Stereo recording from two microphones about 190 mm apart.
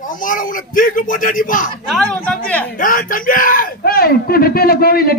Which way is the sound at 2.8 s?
45° left (ahead or behind).